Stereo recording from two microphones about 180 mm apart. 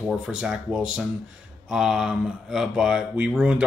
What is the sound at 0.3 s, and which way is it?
Speech, 5° right (ahead or behind).